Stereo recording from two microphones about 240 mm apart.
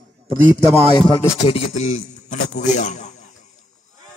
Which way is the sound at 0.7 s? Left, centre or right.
Right.